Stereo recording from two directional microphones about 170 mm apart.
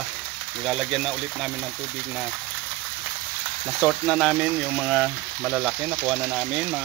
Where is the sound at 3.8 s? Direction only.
Centre (ahead or behind).